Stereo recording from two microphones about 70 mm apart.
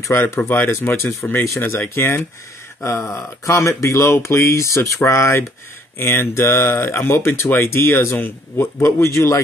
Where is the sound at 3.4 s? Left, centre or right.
Left.